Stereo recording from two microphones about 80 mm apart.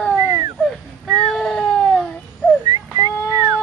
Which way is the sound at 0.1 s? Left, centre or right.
Right.